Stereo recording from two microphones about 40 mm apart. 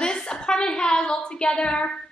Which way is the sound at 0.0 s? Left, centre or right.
Centre.